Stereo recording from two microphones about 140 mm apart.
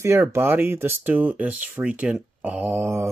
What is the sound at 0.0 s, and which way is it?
Speech, 20° right (ahead or behind).